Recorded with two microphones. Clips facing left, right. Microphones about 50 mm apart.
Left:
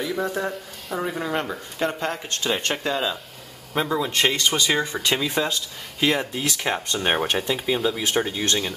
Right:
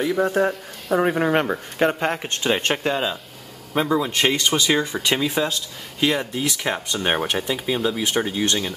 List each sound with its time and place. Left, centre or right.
0.2 s speech: right
1.0 s speech: right; by 3.2 s centre
3.7 s speech: centre
4.5 s speech: centre